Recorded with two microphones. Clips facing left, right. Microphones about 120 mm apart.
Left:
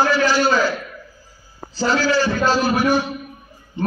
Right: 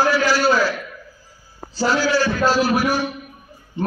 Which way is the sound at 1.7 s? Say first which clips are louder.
Even; centre (ahead or behind).